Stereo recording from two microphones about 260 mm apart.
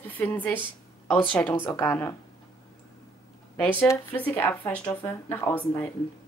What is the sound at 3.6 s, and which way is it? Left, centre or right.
Speech, centre.